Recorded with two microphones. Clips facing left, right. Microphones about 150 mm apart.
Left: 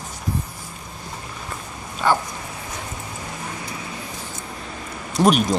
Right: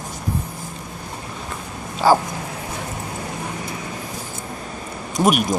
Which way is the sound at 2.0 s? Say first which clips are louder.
Right 5 dB; 35° right (ahead or behind).